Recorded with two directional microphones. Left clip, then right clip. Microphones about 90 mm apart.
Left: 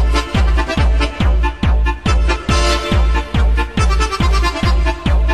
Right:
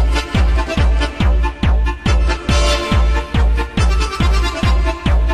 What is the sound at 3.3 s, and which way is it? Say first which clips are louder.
Music: left 1 dB; centre (ahead or behind).